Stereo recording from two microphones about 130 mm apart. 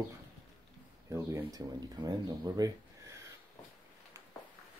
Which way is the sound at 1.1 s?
25° right (ahead or behind).